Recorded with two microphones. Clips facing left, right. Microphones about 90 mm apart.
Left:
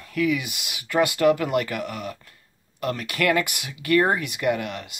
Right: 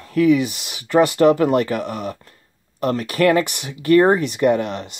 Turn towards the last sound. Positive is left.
turn(degrees=-35)  # may be behind; listen again after turning